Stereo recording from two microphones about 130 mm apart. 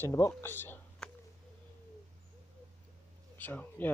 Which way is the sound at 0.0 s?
25° left (ahead or behind).